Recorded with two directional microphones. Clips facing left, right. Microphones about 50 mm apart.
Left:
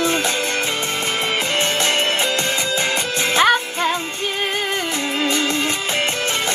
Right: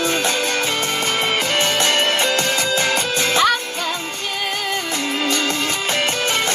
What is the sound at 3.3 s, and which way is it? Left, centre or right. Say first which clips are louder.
Music: left 4 dB; left.